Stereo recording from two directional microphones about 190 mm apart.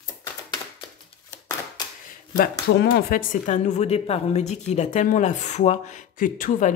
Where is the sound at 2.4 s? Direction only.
55° left (ahead or behind).